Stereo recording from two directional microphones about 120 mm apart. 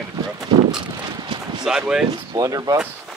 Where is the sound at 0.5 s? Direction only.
35° right (ahead or behind).